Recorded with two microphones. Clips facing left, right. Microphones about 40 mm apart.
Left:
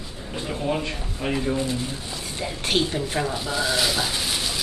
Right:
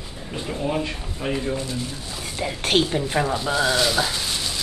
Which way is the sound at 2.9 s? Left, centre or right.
Centre.